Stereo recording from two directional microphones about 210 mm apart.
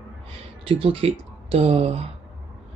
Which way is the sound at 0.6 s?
25° right (ahead or behind).